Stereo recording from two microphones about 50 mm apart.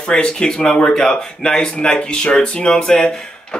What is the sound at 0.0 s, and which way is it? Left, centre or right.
Speech, centre.